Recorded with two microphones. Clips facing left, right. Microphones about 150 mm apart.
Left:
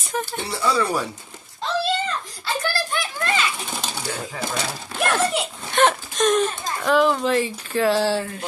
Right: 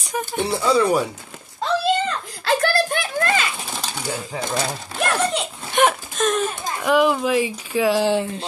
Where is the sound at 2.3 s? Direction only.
75° right (ahead or behind).